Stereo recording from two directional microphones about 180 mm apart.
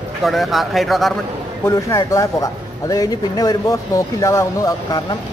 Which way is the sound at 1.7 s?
20° left (ahead or behind).